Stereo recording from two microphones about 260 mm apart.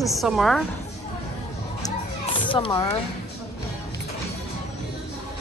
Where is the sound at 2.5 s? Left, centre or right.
Centre.